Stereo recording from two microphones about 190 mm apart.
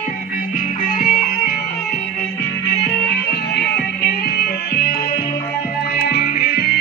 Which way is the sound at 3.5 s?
55° left (ahead or behind).